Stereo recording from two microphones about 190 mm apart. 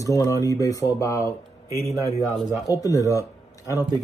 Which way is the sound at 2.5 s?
20° left (ahead or behind).